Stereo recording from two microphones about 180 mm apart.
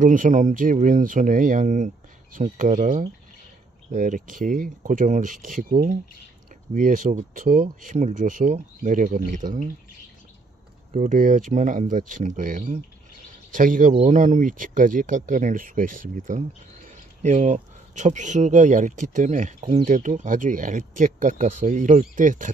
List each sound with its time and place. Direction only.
0.0 s speech: 45° right (ahead or behind)
10.9 s speech: 45° right (ahead or behind)